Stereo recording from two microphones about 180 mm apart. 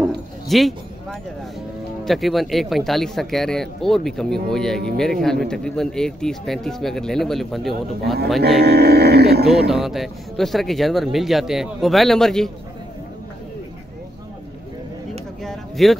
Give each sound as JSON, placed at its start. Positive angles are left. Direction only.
{"t": 0.5, "sound": "speech", "side_deg": 0}
{"t": 2.0, "sound": "speech", "side_deg": 0}
{"t": 8.4, "sound": "speech", "side_deg": -65}
{"t": 9.5, "sound": "speech", "side_deg": 0}
{"t": 15.4, "sound": "a sound", "side_deg": 0}